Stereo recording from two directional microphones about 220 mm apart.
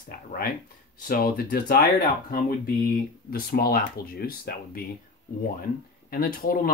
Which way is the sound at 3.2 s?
40° left (ahead or behind).